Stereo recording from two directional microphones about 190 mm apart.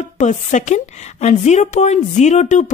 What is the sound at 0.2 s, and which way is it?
Speech, 40° left (ahead or behind).